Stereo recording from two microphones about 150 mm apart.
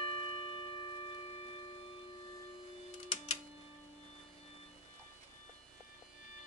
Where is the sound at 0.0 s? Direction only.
35° left (ahead or behind).